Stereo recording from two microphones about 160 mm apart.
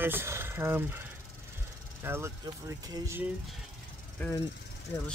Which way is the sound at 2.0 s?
15° right (ahead or behind).